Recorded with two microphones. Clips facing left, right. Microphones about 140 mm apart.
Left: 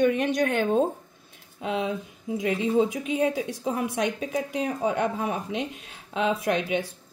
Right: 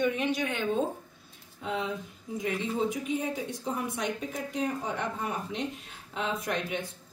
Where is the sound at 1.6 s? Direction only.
80° left.